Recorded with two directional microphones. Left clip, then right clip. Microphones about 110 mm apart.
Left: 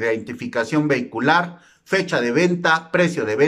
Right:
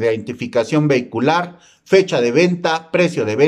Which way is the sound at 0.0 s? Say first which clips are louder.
Right 4 dB; 25° right (ahead or behind).